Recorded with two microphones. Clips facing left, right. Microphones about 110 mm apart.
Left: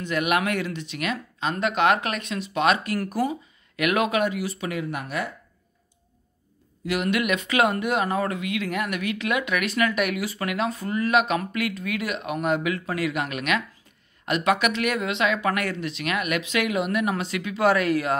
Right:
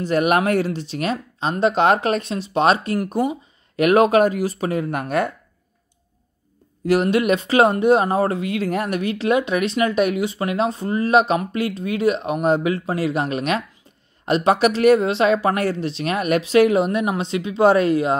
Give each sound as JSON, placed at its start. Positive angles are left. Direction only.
{"t": 0.0, "sound": "speech", "side_deg": -40}
{"t": 3.7, "sound": "speech", "side_deg": -35}
{"t": 6.9, "sound": "speech", "side_deg": -35}